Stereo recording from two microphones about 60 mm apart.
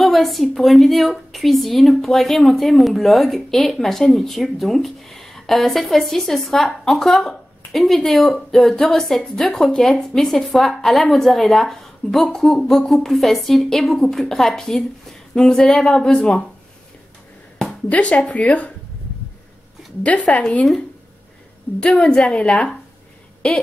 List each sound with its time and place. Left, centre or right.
0.0 s a woman's voice: centre
17.8 s speech: left
20.2 s a woman's voice: centre
21.9 s a woman's voice: centre